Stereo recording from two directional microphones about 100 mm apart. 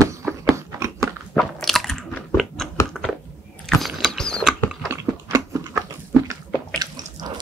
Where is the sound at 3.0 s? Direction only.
5° right (ahead or behind).